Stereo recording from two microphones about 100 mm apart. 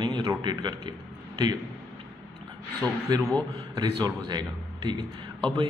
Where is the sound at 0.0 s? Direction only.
50° right (ahead or behind).